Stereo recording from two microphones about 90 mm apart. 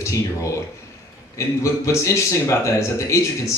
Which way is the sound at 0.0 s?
35° left (ahead or behind).